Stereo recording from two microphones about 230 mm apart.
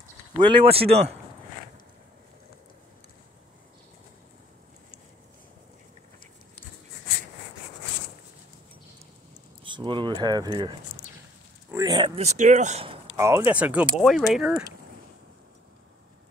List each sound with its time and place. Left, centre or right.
0.4 s speech: right
9.7 s speech: right
13.1 s speech: centre